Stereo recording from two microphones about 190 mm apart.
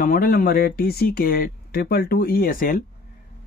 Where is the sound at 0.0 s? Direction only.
50° left (ahead or behind).